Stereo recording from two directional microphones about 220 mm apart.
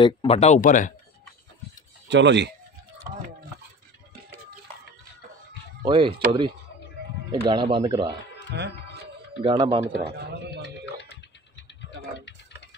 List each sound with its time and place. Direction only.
0.0 s speech: 25° left (ahead or behind)
2.0 s speech: 55° right (ahead or behind)
3.1 s stir: 40° right (ahead or behind)
5.9 s speech: 25° right (ahead or behind)
8.5 s speech: 50° right (ahead or behind)
9.4 s speech: 25° right (ahead or behind)